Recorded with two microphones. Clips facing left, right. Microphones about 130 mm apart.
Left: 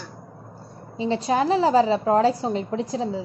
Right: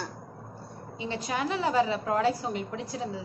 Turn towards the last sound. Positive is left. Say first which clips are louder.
# left 8 dB
turn(degrees=30)  # may be behind; listen again after turning